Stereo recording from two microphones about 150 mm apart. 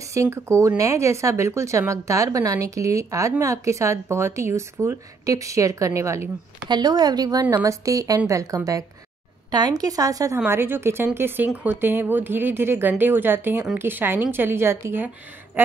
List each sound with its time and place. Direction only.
0.1 s speech: 20° right (ahead or behind)
15.6 s quack: 15° right (ahead or behind)